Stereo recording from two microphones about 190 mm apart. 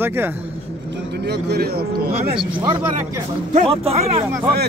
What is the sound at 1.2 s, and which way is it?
Speech, 60° right (ahead or behind).